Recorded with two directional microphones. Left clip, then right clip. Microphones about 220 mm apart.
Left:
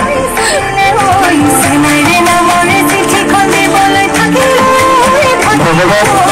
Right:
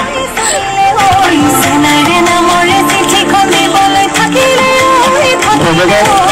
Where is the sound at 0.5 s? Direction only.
30° left (ahead or behind).